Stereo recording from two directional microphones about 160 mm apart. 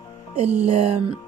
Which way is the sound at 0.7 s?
40° right (ahead or behind).